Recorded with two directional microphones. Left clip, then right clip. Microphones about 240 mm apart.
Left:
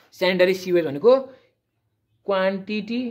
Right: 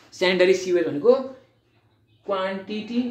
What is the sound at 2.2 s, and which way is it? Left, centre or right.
Speech, left.